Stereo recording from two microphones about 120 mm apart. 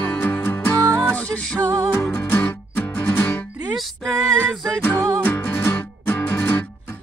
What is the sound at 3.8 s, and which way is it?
Female singing, centre (ahead or behind).